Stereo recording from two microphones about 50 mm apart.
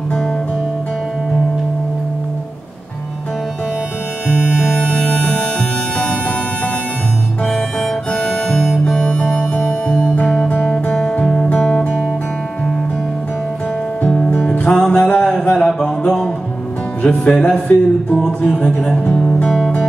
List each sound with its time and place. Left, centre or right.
4.9 s music: left
8.1 s music: centre
9.0 s music: centre
14.1 s music: centre
15.1 s a sound: centre
17.0 s music: left
18.8 s speech: centre
19.0 s music: left